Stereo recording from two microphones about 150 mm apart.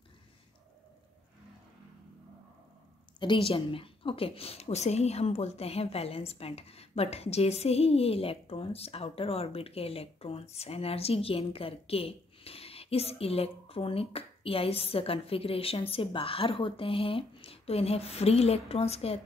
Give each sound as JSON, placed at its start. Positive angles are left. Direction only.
{"t": 3.2, "sound": "a woman's voice", "side_deg": 35}